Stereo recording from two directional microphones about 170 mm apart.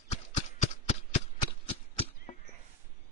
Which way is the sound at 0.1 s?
40° left (ahead or behind).